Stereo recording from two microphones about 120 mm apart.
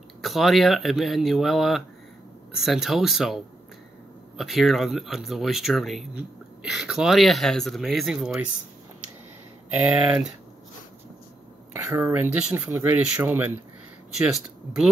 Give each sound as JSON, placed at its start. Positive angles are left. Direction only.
{"t": 0.2, "sound": "speech", "side_deg": 0}
{"t": 4.4, "sound": "speech", "side_deg": 0}
{"t": 9.7, "sound": "speech", "side_deg": -10}
{"t": 11.7, "sound": "speech", "side_deg": -25}
{"t": 14.2, "sound": "speech", "side_deg": -5}